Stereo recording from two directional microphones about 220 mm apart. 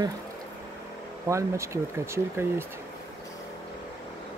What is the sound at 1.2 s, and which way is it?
Speech, 15° right (ahead or behind).